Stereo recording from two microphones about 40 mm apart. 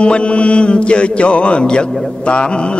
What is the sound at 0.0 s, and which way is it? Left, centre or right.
Mantra, left.